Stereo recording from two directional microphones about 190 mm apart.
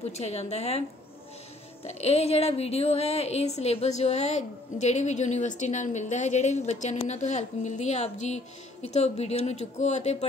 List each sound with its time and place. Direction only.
0.1 s a woman's voice: 35° left (ahead or behind)
1.9 s a woman's voice: 35° left (ahead or behind)